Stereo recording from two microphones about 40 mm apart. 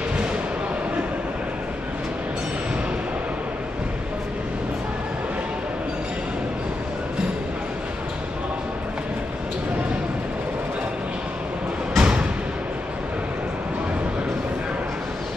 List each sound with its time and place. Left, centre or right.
12.0 s music: right